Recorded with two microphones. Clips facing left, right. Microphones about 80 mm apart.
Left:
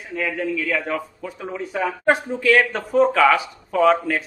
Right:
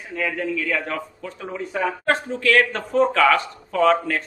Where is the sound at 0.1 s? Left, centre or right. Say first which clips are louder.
Left 1 dB; centre.